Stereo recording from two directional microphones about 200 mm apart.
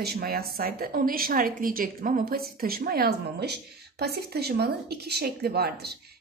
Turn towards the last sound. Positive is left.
turn(degrees=-50)  # may be behind; listen again after turning